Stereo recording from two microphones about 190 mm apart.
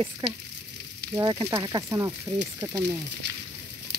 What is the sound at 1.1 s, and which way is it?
Sizzle, 15° right (ahead or behind).